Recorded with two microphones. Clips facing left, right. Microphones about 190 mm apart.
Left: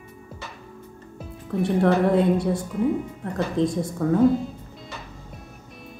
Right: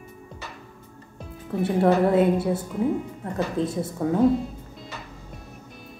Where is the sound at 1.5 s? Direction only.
5° right (ahead or behind).